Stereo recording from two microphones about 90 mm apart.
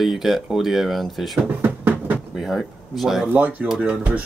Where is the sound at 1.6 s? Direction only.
20° right (ahead or behind).